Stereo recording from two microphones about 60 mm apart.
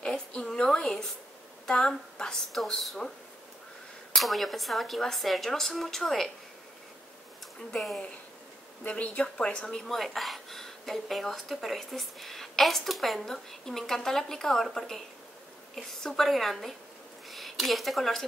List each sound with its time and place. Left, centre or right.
0.0 s a sound: centre
2.5 s speech: centre
4.1 s speech: centre
8.8 s speech: centre
9.9 s a woman's voice: centre